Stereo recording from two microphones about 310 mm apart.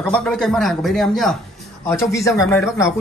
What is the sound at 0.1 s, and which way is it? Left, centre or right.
A man's voice, centre.